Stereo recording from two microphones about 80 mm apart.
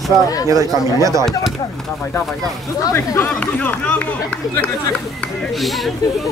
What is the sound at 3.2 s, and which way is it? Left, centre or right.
Speech, left.